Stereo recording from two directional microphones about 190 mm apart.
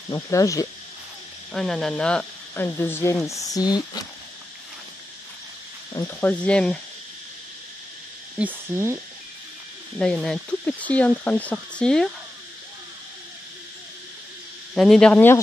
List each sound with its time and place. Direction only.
0.1 s speech: 15° left (ahead or behind)
1.5 s speech: centre (ahead or behind); by 4.0 s 20° left (ahead or behind)
5.9 s speech: 10° left (ahead or behind)
8.4 s speech: 10° right (ahead or behind)
9.9 s speech: 5° left (ahead or behind)
14.7 s speech: centre (ahead or behind)